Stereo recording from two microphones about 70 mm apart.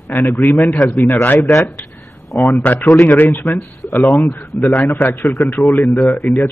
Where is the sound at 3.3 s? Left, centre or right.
Left.